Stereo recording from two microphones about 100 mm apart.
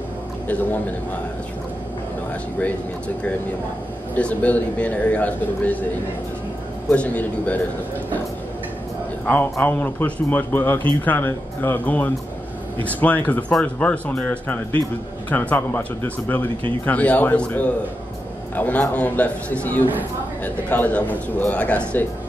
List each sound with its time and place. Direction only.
4.1 s a man's voice: 15° left (ahead or behind)
6.9 s a man's voice: 15° left (ahead or behind)
9.3 s a man's voice: 20° left (ahead or behind)